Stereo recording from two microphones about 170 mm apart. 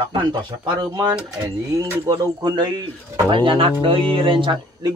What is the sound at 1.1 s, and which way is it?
Speech, 15° right (ahead or behind).